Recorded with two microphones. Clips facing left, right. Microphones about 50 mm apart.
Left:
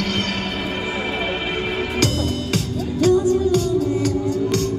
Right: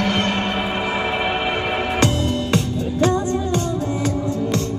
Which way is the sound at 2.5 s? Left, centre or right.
Right.